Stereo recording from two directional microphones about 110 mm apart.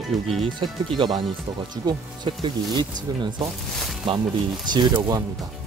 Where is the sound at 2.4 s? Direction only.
45° right (ahead or behind).